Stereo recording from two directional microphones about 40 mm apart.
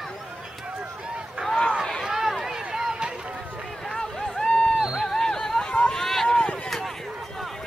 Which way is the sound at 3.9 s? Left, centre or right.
Centre.